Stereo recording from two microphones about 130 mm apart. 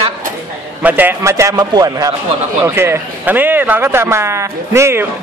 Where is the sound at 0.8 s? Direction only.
15° right (ahead or behind).